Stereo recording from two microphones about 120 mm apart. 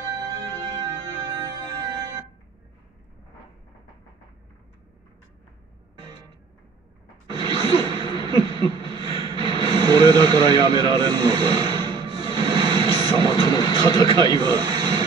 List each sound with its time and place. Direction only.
0.0 s music: 30° right (ahead or behind)
7.2 s a sound: 35° right (ahead or behind)
13.0 s vehicle: 35° right (ahead or behind)
13.3 s vehicle: 40° left (ahead or behind)
14.1 s speech: 35° right (ahead or behind)